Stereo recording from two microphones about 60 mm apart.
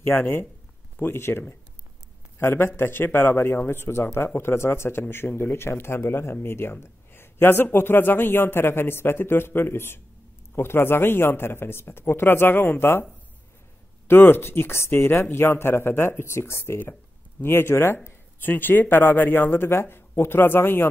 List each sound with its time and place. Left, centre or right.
0.0 s a man's voice: left
14.0 s speech: left
17.9 s speech: left